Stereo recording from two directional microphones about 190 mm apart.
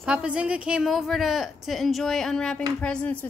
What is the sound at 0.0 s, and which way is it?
A woman's voice, 5° right (ahead or behind).